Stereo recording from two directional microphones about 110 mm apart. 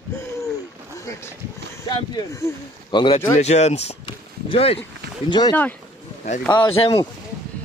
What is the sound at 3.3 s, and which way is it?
Speech, 90° left.